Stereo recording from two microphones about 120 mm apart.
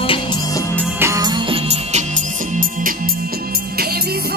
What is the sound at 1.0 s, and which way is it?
Music, 25° right (ahead or behind).